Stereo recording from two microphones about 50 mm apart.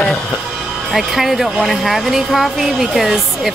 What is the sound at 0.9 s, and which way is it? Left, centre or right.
Speech, centre.